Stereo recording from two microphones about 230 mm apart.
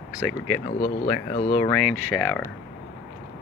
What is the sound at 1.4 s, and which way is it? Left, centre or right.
Speech, left.